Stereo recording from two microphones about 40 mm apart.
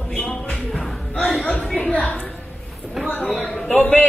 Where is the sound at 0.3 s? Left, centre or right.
Left.